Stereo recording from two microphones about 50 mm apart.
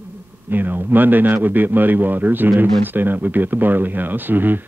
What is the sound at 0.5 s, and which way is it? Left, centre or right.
A man's voice, right.